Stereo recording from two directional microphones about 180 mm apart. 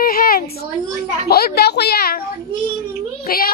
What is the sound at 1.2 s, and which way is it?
Speech, 60° left (ahead or behind).